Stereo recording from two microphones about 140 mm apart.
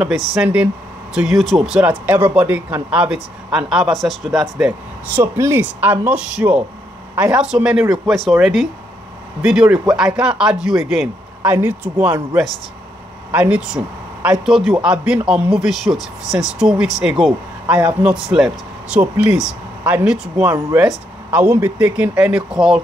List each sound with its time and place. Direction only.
0.0 s a man's voice: 5° right (ahead or behind)
5.1 s a man's voice: 15° right (ahead or behind)
11.4 s a man's voice: 15° right (ahead or behind)
13.3 s a man's voice: 10° right (ahead or behind)